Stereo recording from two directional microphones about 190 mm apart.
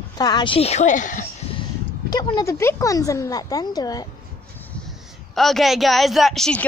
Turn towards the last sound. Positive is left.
turn(degrees=5)  # may be behind; listen again after turning